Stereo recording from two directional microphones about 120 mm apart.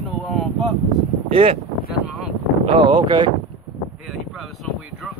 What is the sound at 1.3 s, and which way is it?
Speech, 50° right (ahead or behind).